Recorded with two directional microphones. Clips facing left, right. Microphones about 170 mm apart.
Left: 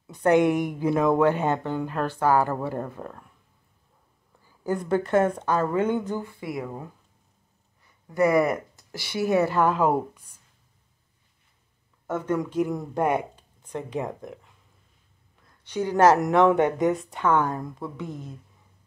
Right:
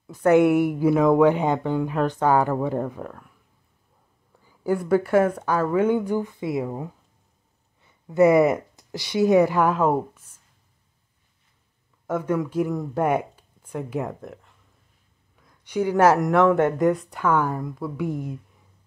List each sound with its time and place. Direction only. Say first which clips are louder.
0.0 s a woman's voice: right 3 dB; centre (ahead or behind)
4.5 s a woman's voice: right 4 dB; 10° right (ahead or behind)
9.8 s speech: right 1 dB; centre (ahead or behind)
12.1 s speech: right 2 dB; 10° right (ahead or behind)
15.6 s speech: right 1 dB; 10° right (ahead or behind)
18.0 s a woman's voice: right 8 dB; 15° right (ahead or behind)